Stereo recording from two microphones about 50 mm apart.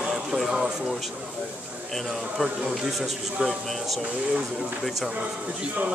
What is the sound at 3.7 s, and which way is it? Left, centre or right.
Speech, centre.